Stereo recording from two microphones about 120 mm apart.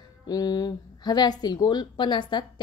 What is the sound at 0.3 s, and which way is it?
Speech, 35° left (ahead or behind).